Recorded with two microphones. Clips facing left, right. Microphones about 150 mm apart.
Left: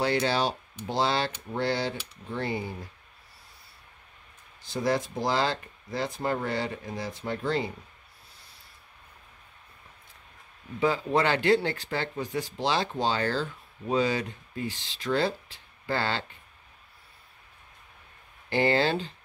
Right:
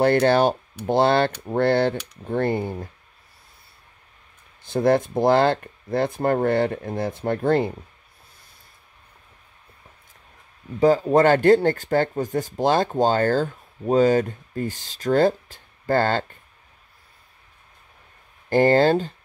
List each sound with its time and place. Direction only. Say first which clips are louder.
0.0 s speech: right 9 dB; 55° right (ahead or behind)
4.6 s speech: right 8 dB; 55° right (ahead or behind)
10.8 s speech: right 9 dB; 40° right (ahead or behind)
18.5 s speech: right 8 dB; 45° right (ahead or behind)